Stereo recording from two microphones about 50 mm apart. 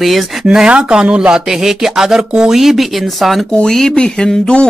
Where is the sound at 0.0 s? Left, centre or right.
Centre.